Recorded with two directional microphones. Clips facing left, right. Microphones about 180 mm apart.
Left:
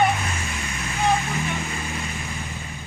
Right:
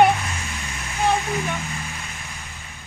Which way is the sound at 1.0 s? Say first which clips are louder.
Right 1 dB; centre (ahead or behind).